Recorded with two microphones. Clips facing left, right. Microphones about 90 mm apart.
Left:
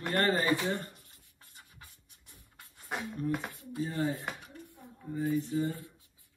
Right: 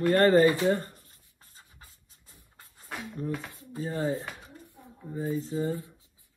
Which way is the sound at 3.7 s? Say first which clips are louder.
Right 3 dB; 30° right (ahead or behind).